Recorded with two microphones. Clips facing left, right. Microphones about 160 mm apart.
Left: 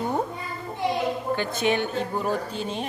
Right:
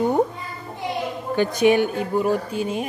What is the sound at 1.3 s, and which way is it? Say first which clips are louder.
Speech: right 11 dB; 15° right (ahead or behind).